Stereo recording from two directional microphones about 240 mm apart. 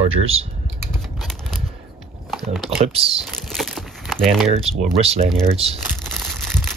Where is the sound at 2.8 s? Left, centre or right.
Right.